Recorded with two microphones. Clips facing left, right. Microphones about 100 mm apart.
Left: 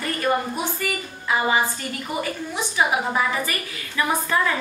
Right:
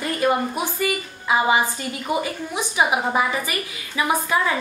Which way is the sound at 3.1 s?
15° right (ahead or behind).